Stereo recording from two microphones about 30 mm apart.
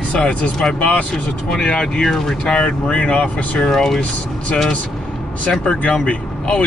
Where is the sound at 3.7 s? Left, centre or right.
Centre.